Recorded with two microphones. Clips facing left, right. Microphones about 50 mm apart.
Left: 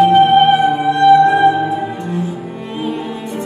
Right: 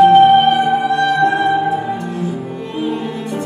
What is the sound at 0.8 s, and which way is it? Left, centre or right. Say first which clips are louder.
Music: left 5 dB; centre.